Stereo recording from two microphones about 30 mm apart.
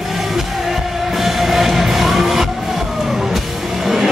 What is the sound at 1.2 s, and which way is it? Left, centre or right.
Music, centre.